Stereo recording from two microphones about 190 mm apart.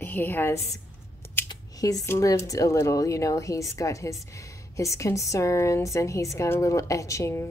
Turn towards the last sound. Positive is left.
turn(degrees=15)  # may be behind; listen again after turning